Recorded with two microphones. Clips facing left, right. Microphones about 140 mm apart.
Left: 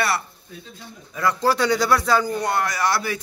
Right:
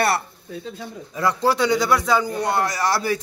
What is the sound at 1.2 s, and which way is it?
A man's voice, 25° right (ahead or behind).